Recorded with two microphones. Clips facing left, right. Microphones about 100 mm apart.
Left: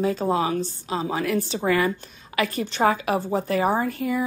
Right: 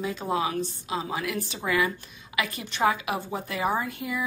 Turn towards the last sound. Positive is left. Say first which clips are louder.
# left 6 dB
turn(degrees=40)  # may be behind; listen again after turning